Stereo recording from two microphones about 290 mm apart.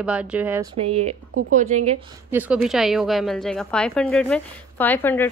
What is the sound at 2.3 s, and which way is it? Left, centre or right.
A woman's voice, centre.